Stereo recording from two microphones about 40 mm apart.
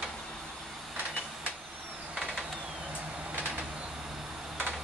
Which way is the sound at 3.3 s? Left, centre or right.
Right.